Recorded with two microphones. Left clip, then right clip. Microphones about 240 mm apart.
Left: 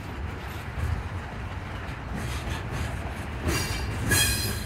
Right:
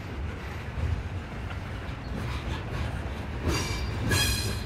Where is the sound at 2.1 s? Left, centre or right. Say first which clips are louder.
Left 1 dB; left.